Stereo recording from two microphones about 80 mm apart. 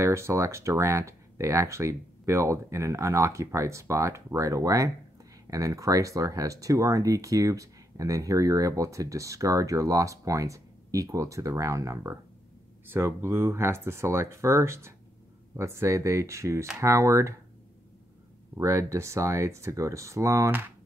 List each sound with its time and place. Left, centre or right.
0.0 s speech: right
18.6 s speech: right